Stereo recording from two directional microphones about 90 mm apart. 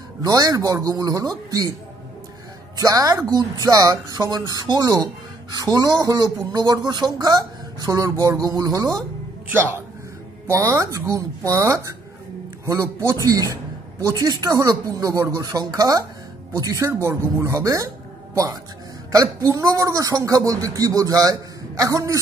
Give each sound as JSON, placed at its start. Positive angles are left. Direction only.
{"t": 0.2, "sound": "speech", "side_deg": -45}
{"t": 2.8, "sound": "speech", "side_deg": -40}
{"t": 9.5, "sound": "speech", "side_deg": -25}
{"t": 13.1, "sound": "speech", "side_deg": -40}